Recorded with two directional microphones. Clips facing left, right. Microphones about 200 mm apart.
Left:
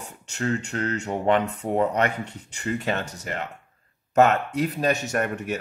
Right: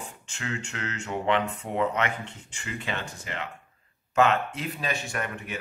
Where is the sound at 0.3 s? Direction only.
40° left (ahead or behind).